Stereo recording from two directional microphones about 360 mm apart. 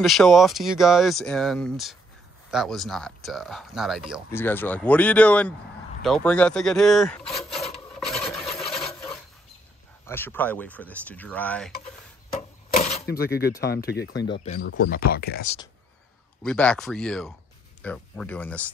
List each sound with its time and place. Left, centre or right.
0.0 s speech: centre
7.7 s filing: centre
8.7 s coin: centre
10.0 s speech: centre
12.3 s a sound: left
14.4 s speech: centre
16.4 s speech: centre